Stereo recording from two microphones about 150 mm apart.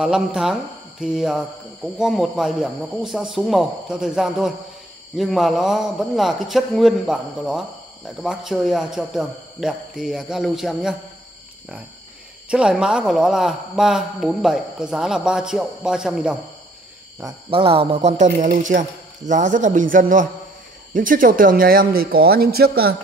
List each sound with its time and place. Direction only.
0.0 s speech: 5° right (ahead or behind)
12.4 s speech: 5° right (ahead or behind)
17.5 s speech: 35° right (ahead or behind); by 22.9 s 90° right